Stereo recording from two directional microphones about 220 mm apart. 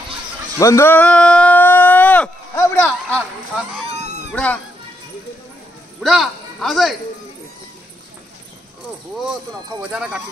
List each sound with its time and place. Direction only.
0.6 s a sound: 10° left (ahead or behind)
4.3 s speech: 5° left (ahead or behind)
5.9 s speech: centre (ahead or behind)
9.1 s speech: centre (ahead or behind)